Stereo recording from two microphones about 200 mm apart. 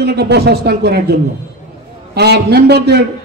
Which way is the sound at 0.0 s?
55° right (ahead or behind).